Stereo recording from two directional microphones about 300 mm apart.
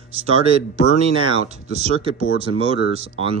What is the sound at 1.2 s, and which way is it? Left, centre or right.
Speech, centre.